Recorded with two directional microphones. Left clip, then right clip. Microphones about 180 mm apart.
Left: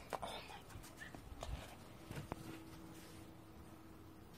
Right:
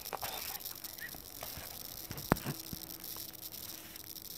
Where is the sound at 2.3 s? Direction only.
45° right (ahead or behind).